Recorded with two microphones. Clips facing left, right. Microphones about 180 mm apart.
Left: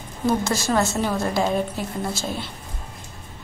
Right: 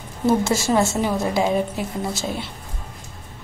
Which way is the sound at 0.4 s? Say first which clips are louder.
Right 3 dB; 25° right (ahead or behind).